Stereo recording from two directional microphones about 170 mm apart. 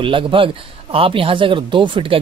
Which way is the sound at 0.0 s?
30° right (ahead or behind).